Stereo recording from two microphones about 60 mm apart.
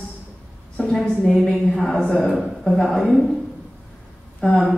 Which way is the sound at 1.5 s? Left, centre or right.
Centre.